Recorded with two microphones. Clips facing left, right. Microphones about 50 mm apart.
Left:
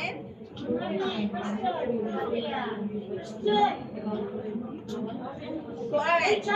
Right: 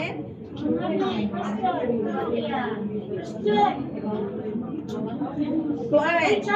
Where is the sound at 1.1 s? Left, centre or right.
Right.